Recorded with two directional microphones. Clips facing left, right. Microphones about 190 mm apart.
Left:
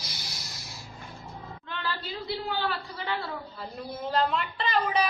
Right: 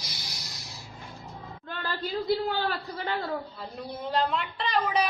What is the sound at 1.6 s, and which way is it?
A man's voice, 45° right (ahead or behind).